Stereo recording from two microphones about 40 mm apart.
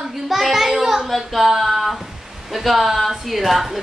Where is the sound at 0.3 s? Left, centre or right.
Centre.